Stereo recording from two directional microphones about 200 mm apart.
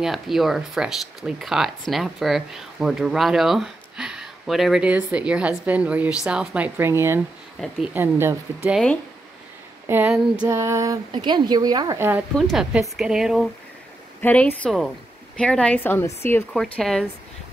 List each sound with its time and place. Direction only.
0.0 s a woman's voice: centre (ahead or behind)
12.4 s speech: centre (ahead or behind)
14.2 s a woman's voice: 10° left (ahead or behind)